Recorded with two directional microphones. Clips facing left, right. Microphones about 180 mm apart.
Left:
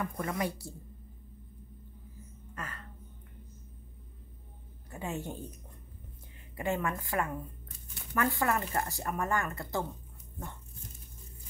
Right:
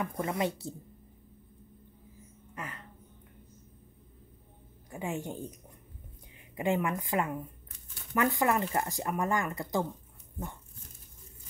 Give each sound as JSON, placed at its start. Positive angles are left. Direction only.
{"t": 0.0, "sound": "speech", "side_deg": -25}
{"t": 2.5, "sound": "a sound", "side_deg": -15}
{"t": 4.9, "sound": "speech", "side_deg": -15}
{"t": 6.5, "sound": "speech", "side_deg": -15}